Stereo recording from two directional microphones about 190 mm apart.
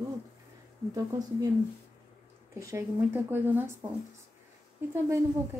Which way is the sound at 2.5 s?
15° right (ahead or behind).